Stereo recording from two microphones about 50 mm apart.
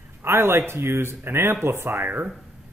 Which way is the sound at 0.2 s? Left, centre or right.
Right.